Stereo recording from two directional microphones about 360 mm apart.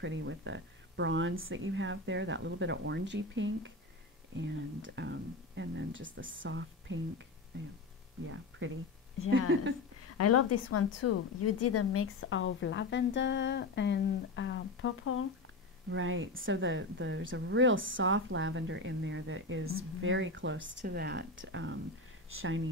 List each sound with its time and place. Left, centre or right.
0.0 s speech: right
8.3 s speech: right
10.1 s a woman's voice: left
15.9 s speech: right